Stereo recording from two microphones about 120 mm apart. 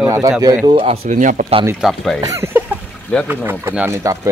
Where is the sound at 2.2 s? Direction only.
30° right (ahead or behind).